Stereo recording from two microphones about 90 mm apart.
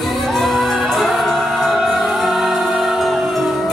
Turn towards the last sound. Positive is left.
turn(degrees=0)  # may be behind; listen again after turning